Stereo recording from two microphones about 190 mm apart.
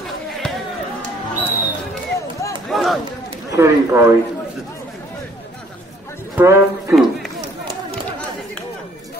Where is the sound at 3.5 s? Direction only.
15° right (ahead or behind).